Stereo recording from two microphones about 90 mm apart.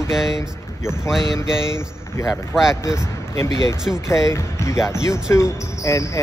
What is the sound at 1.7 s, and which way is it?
Speech, 30° left (ahead or behind).